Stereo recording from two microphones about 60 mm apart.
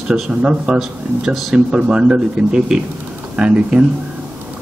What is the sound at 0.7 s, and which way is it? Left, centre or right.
Speech, centre.